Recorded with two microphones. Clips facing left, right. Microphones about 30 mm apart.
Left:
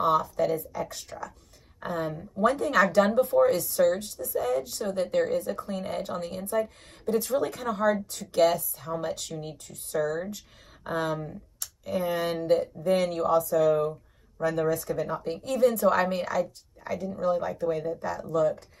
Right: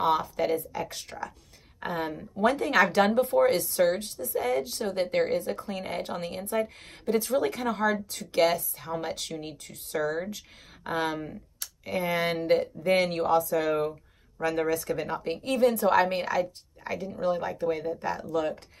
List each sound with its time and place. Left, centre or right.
0.0 s speech: right
5.7 s speech: right
14.7 s speech: right